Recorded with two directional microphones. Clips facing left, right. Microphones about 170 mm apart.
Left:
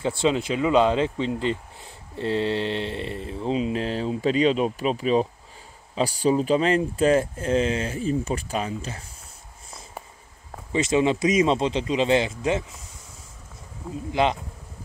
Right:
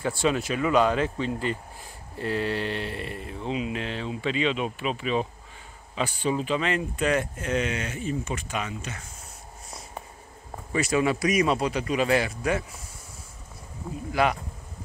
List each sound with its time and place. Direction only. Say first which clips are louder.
0.2 s a man's voice: left 3 dB; 20° left (ahead or behind)
10.7 s a man's voice: left 3 dB; 20° left (ahead or behind)
14.1 s a man's voice: left 2 dB; 25° left (ahead or behind)